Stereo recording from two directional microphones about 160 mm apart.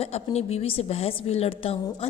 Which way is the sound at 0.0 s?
40° left (ahead or behind).